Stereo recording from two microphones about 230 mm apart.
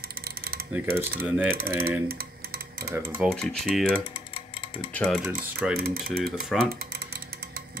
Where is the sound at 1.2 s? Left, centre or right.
Centre.